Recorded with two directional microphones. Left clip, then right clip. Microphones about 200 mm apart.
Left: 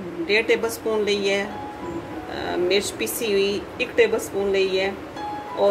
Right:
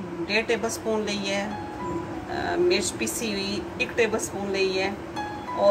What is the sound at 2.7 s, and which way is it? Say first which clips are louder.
Speech: left 3 dB; 45° left (ahead or behind).